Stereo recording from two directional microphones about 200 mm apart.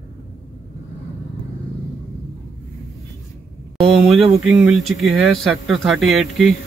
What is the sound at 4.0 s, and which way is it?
Speech, centre (ahead or behind).